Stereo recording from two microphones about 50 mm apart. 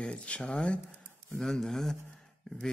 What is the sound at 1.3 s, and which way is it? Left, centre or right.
Speech, centre.